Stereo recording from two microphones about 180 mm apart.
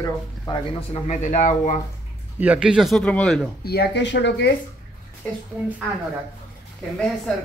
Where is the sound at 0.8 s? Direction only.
35° left (ahead or behind).